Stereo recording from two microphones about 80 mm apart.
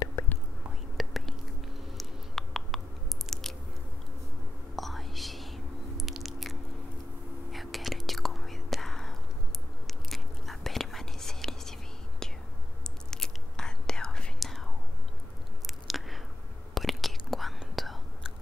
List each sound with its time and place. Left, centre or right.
0.2 s whispering: left
0.9 s whispering: centre
2.0 s a sound: centre
3.3 s biting: centre
4.7 s whispering: centre
15.6 s chewing: centre
16.7 s whispering: centre